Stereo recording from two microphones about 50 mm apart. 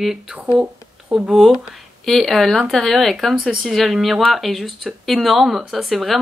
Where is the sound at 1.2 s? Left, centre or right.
Centre.